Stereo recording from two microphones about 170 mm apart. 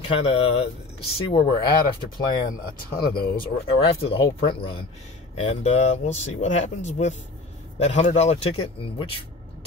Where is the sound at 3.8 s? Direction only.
35° left (ahead or behind).